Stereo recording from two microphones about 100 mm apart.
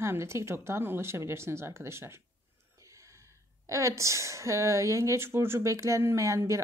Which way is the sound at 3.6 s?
30° right (ahead or behind).